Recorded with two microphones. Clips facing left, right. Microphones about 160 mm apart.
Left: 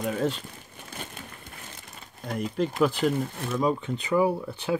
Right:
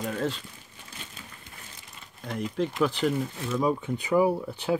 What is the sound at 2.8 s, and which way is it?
Speech, 10° left (ahead or behind).